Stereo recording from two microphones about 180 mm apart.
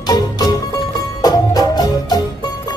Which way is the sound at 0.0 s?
20° left (ahead or behind).